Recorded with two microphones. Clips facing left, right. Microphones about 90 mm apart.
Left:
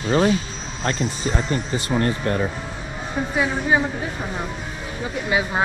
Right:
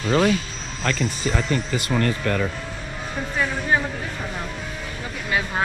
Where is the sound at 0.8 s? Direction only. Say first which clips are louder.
Even; 35° left (ahead or behind).